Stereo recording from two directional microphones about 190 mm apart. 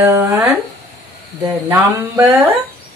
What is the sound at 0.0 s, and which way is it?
Speech, 15° right (ahead or behind).